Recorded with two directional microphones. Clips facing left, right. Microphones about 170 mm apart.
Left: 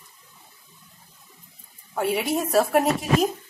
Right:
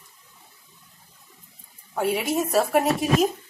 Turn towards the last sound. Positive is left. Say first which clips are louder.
# even
turn(degrees=0)  # may be behind; listen again after turning